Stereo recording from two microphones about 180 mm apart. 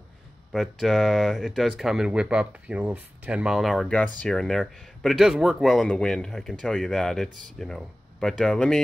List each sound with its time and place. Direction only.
0.5 s speech: centre (ahead or behind)